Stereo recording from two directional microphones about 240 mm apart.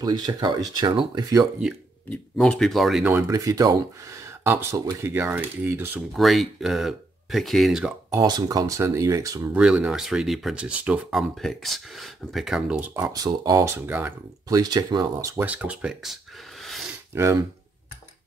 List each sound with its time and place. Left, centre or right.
0.0 s speech: centre
1.6 s speech: centre
16.6 s a sound: centre
17.1 s speech: centre